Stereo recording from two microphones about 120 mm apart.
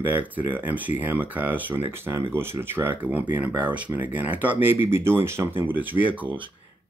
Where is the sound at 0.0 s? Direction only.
15° right (ahead or behind).